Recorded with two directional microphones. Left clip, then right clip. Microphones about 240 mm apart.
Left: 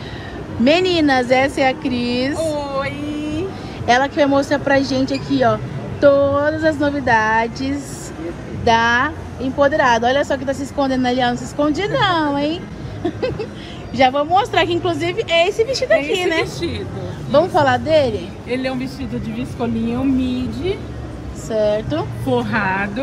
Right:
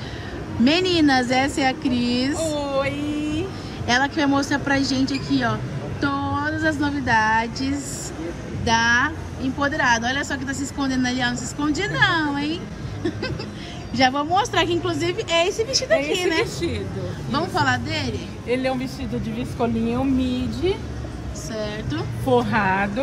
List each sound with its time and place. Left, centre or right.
0.7 s speech: centre
2.5 s a sound: centre
3.3 s speech: centre
17.3 s speech: centre
18.5 s speech: right
21.5 s speech: centre
22.2 s speech: right